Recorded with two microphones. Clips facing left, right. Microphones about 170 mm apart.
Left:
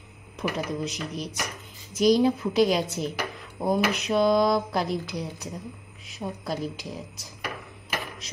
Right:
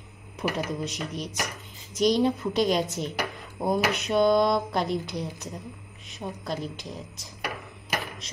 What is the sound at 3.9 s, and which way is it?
Speech, centre (ahead or behind).